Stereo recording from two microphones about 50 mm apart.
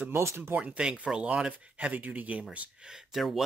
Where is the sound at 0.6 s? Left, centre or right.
Centre.